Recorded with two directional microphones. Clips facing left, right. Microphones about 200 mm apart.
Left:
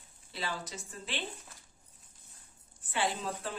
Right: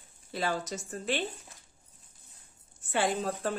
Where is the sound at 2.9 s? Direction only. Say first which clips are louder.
Right 5 dB; 50° right (ahead or behind).